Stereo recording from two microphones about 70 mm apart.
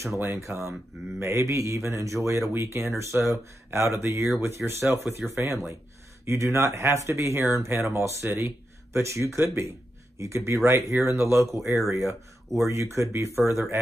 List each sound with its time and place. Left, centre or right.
0.2 s speech: right